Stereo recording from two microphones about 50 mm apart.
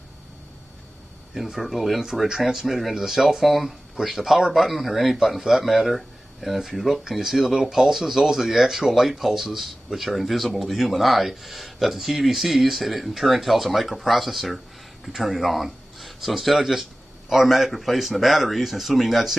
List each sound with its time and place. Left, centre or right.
1.3 s speech: centre